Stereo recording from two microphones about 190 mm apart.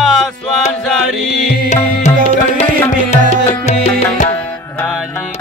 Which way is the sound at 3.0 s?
35° left (ahead or behind).